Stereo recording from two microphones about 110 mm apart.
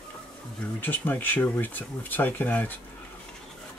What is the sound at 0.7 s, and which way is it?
Speech, 15° left (ahead or behind).